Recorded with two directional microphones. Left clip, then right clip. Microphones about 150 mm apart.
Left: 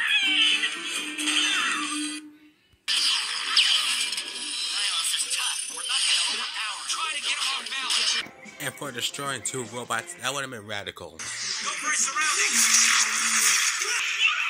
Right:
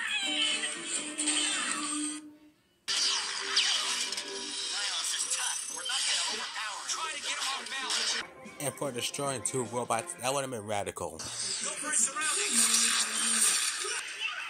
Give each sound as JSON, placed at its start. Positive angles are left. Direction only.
{"t": 0.2, "sound": "music", "side_deg": -35}
{"t": 9.6, "sound": "speech", "side_deg": 30}
{"t": 11.4, "sound": "a sound", "side_deg": -60}